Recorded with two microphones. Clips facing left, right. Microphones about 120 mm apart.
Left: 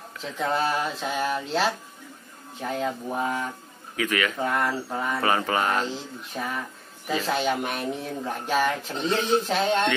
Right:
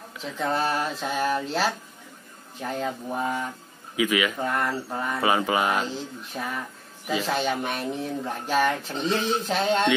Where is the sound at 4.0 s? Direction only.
10° right (ahead or behind).